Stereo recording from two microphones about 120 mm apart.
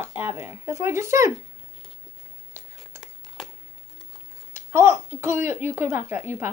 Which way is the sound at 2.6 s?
20° right (ahead or behind).